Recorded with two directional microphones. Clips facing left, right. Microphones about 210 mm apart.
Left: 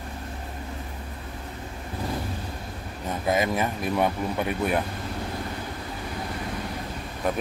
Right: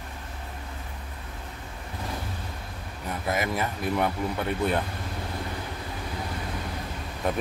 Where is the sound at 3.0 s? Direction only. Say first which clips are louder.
Left 4 dB; 20° left (ahead or behind).